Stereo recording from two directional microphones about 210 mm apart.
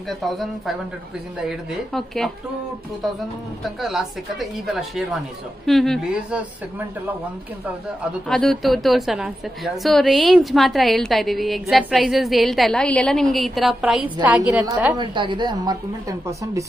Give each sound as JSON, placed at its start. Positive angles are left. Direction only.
{"t": 0.1, "sound": "a woman's voice", "side_deg": 0}
{"t": 3.6, "sound": "a woman's voice", "side_deg": 0}
{"t": 8.3, "sound": "a woman's voice", "side_deg": 0}
{"t": 15.0, "sound": "speech", "side_deg": -20}